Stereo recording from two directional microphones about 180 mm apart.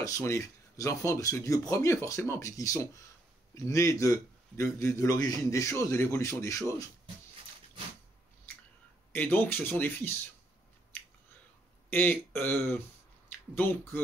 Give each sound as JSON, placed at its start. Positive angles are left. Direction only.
{"t": 0.0, "sound": "a man's voice", "side_deg": 20}
{"t": 9.1, "sound": "a man's voice", "side_deg": 10}
{"t": 11.9, "sound": "a man's voice", "side_deg": 10}
{"t": 13.6, "sound": "a man's voice", "side_deg": 10}